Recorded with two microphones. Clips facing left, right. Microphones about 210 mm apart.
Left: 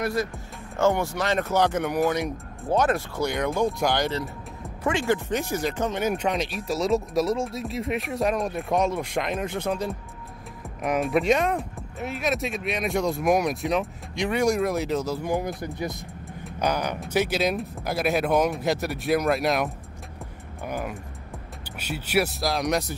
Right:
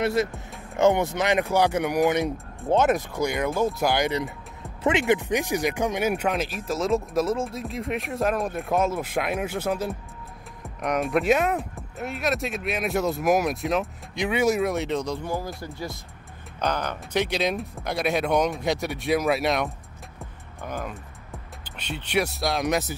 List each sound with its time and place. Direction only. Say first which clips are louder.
0.0 s speech: right 3 dB; 25° right (ahead or behind)
3.2 s speech: even; 10° right (ahead or behind)
15.2 s speech: left 3 dB; 15° left (ahead or behind); by 19.7 s centre (ahead or behind)
20.6 s speech: left 2 dB; 10° left (ahead or behind)